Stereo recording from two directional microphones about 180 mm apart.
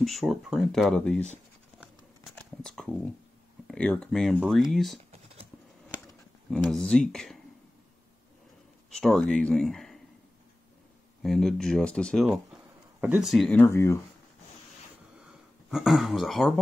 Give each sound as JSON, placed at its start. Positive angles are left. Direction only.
{"t": 0.0, "sound": "speech", "side_deg": 0}
{"t": 2.3, "sound": "a sound", "side_deg": 5}
{"t": 3.6, "sound": "speech", "side_deg": 5}
{"t": 4.9, "sound": "typing", "side_deg": -35}
{"t": 6.5, "sound": "speech", "side_deg": 5}
{"t": 8.9, "sound": "speech", "side_deg": 5}
{"t": 11.2, "sound": "speech", "side_deg": 0}
{"t": 12.3, "sound": "a sound", "side_deg": -10}
{"t": 13.6, "sound": "speech", "side_deg": 15}
{"t": 15.7, "sound": "speech", "side_deg": 0}